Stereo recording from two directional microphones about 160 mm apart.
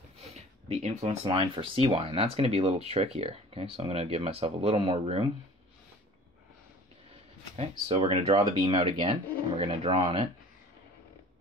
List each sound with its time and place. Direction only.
0.2 s speech: 40° right (ahead or behind)
7.5 s speech: 35° right (ahead or behind)